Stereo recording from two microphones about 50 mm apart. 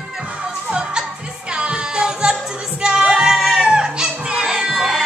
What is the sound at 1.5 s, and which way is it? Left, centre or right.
Music, centre.